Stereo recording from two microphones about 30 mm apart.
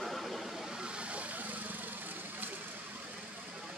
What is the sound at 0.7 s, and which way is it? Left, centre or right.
Vehicle, right.